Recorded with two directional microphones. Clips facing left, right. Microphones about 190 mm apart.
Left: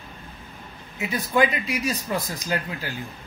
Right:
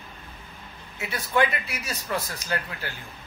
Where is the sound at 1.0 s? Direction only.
15° left (ahead or behind).